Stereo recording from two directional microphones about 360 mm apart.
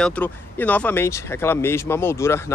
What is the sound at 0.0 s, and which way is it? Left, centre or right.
Speech, centre.